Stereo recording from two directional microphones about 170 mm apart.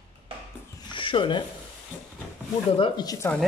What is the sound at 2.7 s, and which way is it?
Speech, 25° left (ahead or behind).